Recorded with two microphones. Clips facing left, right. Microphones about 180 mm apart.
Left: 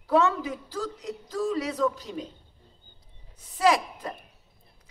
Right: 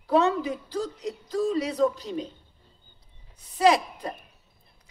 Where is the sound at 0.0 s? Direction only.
20° right (ahead or behind).